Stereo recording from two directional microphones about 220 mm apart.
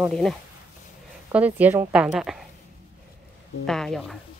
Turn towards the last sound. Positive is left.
turn(degrees=0)  # may be behind; listen again after turning